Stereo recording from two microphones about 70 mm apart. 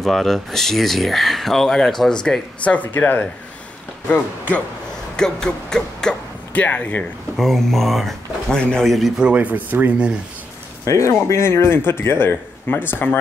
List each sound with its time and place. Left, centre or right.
0.0 s speech: centre
2.6 s speech: left
5.1 s speech: centre
6.5 s speech: left
7.3 s speech: centre
9.2 s speech: right
10.9 s a man's voice: left